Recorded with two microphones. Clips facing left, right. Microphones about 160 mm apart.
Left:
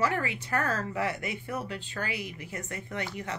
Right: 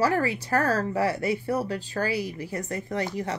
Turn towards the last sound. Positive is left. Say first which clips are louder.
# right 7 dB
turn(degrees=-35)  # may be behind; listen again after turning